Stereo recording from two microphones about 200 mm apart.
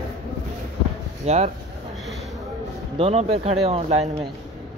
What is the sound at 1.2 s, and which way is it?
Speech, 35° right (ahead or behind).